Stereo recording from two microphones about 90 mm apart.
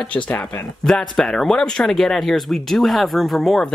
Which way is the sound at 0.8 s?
5° left (ahead or behind).